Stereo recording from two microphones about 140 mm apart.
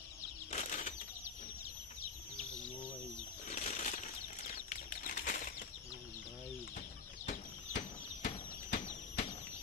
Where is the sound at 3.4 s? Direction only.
55° left (ahead or behind); by 5.5 s 75° left (ahead or behind).